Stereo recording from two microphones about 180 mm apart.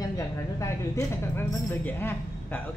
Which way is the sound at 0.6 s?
15° left (ahead or behind).